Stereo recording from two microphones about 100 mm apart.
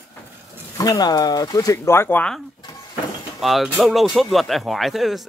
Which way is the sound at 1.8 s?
20° left (ahead or behind).